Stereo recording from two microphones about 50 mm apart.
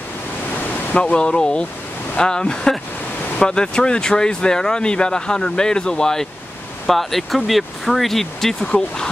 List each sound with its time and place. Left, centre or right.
1.1 s speech: centre
6.9 s speech: centre